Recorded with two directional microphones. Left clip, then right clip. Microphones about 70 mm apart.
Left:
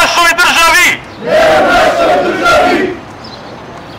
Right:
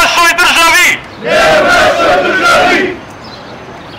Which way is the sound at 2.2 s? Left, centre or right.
Right.